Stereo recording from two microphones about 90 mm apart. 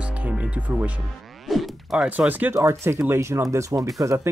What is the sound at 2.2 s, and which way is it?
Speech, 20° right (ahead or behind).